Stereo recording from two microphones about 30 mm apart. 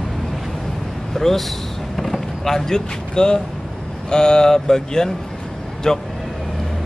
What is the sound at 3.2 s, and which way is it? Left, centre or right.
Speech, left.